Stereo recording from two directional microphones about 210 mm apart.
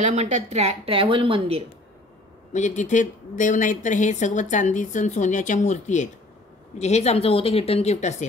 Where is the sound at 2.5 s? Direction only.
35° left (ahead or behind).